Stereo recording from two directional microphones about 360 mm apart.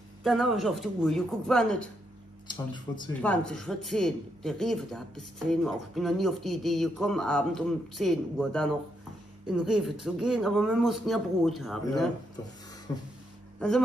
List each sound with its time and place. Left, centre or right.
0.2 s speech: centre
2.4 s speech: centre
12.9 s beatboxing: centre